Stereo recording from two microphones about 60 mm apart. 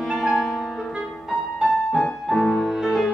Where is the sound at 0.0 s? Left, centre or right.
Centre.